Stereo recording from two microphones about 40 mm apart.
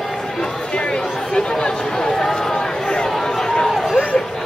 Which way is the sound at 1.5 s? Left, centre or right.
Centre.